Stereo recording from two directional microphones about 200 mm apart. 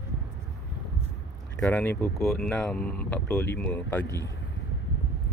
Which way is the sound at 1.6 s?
5° left (ahead or behind).